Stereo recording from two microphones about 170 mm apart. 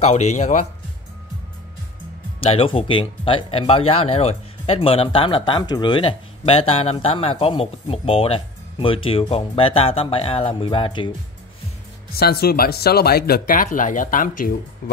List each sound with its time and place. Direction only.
0.0 s speech: 40° left (ahead or behind)
2.4 s speech: 35° left (ahead or behind)
12.1 s speech: 65° left (ahead or behind)